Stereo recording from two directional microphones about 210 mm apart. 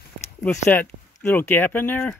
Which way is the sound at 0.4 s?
10° left (ahead or behind).